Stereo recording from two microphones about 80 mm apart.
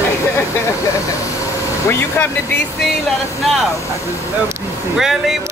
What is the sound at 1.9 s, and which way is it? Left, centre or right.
Speech, left.